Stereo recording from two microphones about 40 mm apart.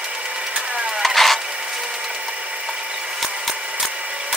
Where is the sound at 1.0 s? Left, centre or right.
Centre.